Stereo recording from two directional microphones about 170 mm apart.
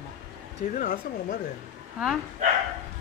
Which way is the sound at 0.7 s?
50° left (ahead or behind).